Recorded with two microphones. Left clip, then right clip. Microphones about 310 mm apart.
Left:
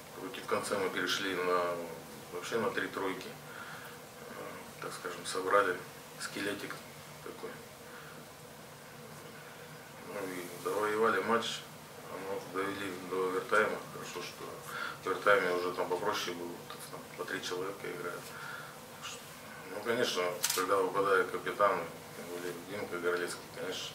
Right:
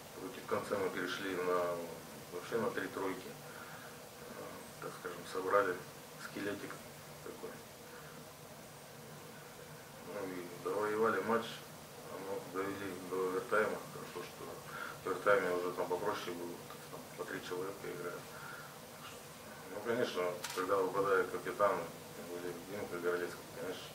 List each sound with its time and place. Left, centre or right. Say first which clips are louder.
0.5 s speech: left 3 dB; centre
5.0 s speech: left 4 dB; centre
10.1 s a sound: left 3 dB; centre
15.0 s speech: left 4 dB; centre
17.6 s speech: left 3 dB; centre
19.8 s speech: left 4 dB; centre